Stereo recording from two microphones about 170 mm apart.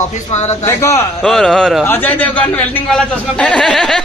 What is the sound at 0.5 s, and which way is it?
Speech, 15° left (ahead or behind).